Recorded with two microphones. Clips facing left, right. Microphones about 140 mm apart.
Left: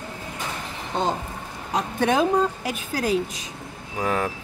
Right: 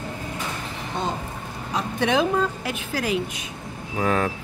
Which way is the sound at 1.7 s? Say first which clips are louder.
Left 1 dB; 45° left (ahead or behind).